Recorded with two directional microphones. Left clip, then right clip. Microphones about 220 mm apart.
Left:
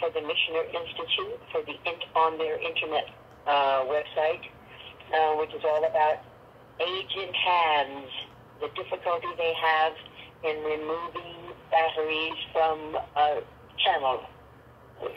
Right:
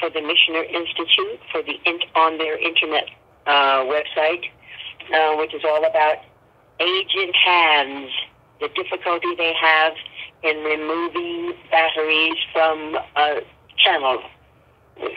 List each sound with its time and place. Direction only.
0.0 s speech: 20° right (ahead or behind)